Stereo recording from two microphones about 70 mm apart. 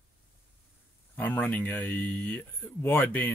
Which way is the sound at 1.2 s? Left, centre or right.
Left.